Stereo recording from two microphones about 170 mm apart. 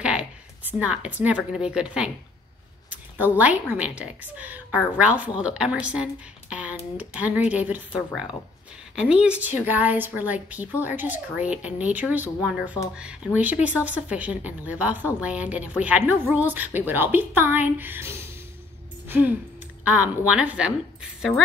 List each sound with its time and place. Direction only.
0.0 s a woman's voice: 5° right (ahead or behind)
3.2 s a woman's voice: 10° right (ahead or behind)
8.9 s a woman's voice: 5° right (ahead or behind)
19.0 s a sound: 10° right (ahead or behind)
19.8 s a woman's voice: 10° right (ahead or behind)